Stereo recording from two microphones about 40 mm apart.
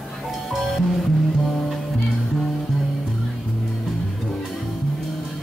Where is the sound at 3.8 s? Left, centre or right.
Centre.